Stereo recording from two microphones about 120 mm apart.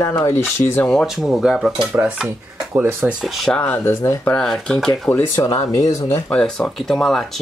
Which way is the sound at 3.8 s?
20° left (ahead or behind).